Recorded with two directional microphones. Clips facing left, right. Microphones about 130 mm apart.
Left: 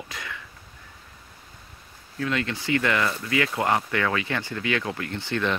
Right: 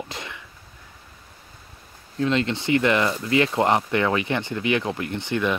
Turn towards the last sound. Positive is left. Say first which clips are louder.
# right 3 dB
turn(degrees=-15)  # may be behind; listen again after turning